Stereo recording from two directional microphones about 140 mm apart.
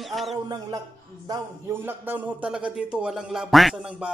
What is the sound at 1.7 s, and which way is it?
A man's voice, 15° right (ahead or behind).